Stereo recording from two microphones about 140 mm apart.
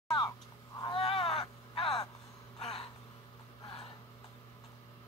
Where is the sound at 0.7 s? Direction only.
30° left (ahead or behind).